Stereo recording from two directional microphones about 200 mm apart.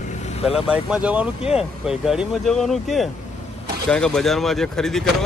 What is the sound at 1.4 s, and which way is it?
Speech, 30° left (ahead or behind).